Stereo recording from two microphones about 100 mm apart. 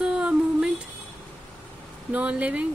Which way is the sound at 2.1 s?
15° right (ahead or behind).